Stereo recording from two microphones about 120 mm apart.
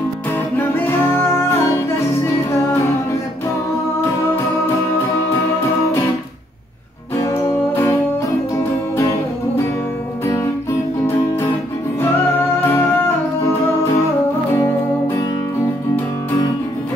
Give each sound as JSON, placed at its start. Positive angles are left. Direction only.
{"t": 0.6, "sound": "music", "side_deg": 15}
{"t": 7.7, "sound": "music", "side_deg": 15}
{"t": 10.2, "sound": "music", "side_deg": 20}
{"t": 12.6, "sound": "music", "side_deg": 15}